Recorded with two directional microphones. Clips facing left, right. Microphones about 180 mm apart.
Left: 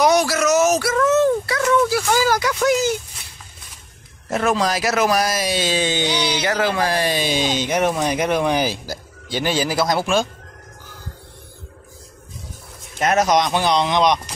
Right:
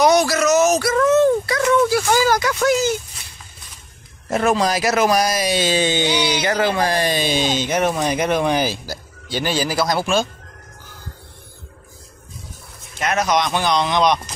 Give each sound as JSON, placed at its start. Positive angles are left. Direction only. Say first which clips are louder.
{"t": 0.0, "sound": "a sound", "louder": "right 1 dB", "side_deg": 10}
{"t": 1.0, "sound": "dog", "louder": "right 2 dB", "side_deg": 5}
{"t": 2.1, "sound": "a sound", "louder": "right 1 dB", "side_deg": 5}
{"t": 4.5, "sound": "speech", "louder": "right 2 dB", "side_deg": 0}
{"t": 6.6, "sound": "speech", "louder": "right 1 dB", "side_deg": 5}
{"t": 13.0, "sound": "a man's voice", "louder": "left 2 dB", "side_deg": 40}
{"t": 13.5, "sound": "speech", "louder": "left 1 dB", "side_deg": 30}